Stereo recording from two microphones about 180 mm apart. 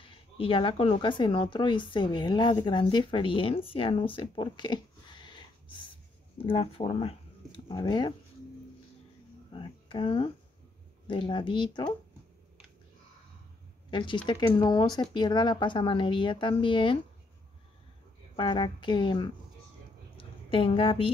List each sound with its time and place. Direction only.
0.0 s speech: 30° left (ahead or behind)
9.5 s a woman's voice: 30° left (ahead or behind)
13.8 s a woman's voice: 25° left (ahead or behind)
18.3 s a woman's voice: 25° left (ahead or behind)
20.2 s a sound: 30° left (ahead or behind)